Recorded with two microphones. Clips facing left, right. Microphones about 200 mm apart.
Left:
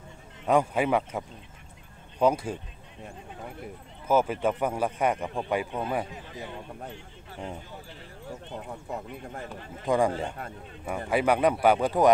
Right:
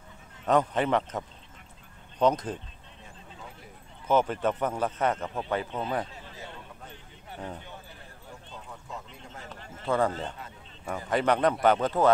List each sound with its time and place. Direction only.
0.5 s a man's voice: 10° left (ahead or behind)
3.0 s a sound: 55° left (ahead or behind)
4.1 s a man's voice: 10° left (ahead or behind)
8.5 s speech: 60° left (ahead or behind)
9.5 s a man's voice: 10° left (ahead or behind)